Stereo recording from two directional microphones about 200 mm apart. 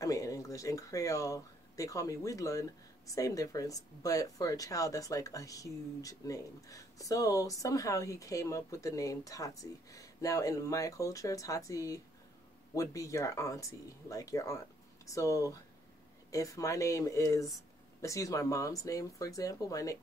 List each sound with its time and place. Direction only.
0.0 s speech: 15° left (ahead or behind)